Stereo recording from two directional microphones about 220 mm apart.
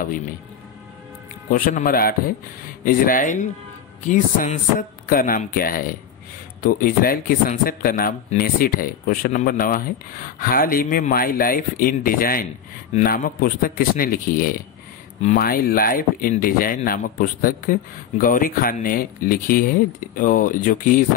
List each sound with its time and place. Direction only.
1.5 s speech: 40° left (ahead or behind)